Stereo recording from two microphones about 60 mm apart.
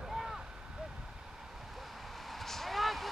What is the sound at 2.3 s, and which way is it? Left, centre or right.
Vehicle, centre.